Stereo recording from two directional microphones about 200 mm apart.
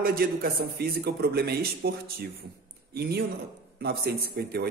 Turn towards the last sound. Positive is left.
turn(degrees=-50)  # may be behind; listen again after turning